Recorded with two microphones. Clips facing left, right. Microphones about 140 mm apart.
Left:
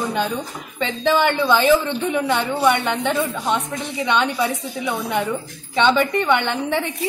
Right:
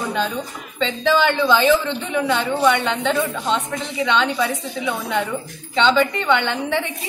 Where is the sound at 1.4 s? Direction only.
15° left (ahead or behind).